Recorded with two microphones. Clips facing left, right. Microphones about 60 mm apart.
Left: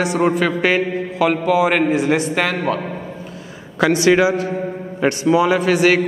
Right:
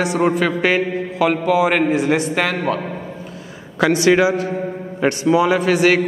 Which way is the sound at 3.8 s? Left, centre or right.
Centre.